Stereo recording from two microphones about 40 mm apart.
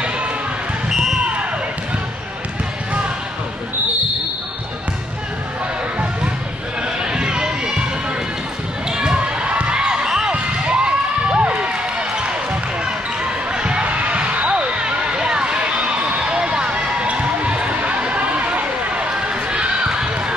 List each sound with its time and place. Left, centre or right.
7.1 s run: right
8.9 s crowd: right
9.2 s crowd: right
12.8 s basketball bounce: right